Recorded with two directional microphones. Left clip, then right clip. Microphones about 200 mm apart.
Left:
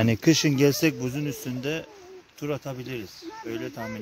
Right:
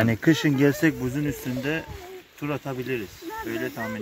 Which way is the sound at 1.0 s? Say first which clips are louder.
Right 2 dB; 30° left (ahead or behind).